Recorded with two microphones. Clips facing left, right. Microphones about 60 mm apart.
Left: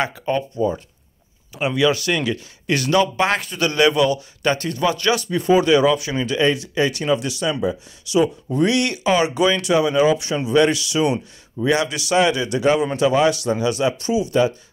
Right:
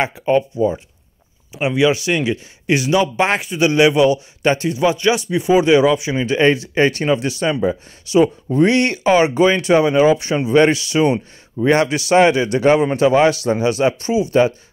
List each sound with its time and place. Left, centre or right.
0.0 s speech: right
6.3 s speech: right